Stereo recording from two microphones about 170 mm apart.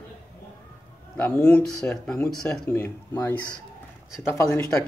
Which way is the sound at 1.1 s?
10° left (ahead or behind).